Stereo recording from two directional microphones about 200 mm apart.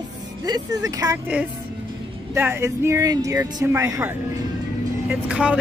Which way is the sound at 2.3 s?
10° right (ahead or behind).